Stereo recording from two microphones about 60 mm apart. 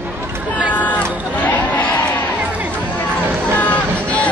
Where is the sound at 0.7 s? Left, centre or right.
Left.